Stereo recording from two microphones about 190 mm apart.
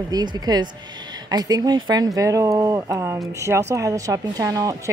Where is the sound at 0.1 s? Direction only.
20° right (ahead or behind).